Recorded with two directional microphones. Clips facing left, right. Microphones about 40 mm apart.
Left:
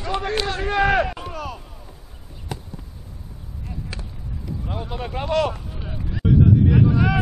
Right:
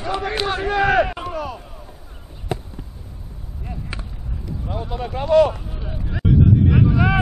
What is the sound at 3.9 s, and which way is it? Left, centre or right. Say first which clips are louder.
Basketball bounce: right 3 dB; right.